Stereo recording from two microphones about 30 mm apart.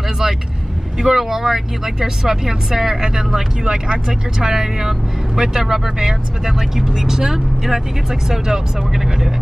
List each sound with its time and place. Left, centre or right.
0.9 s speech: centre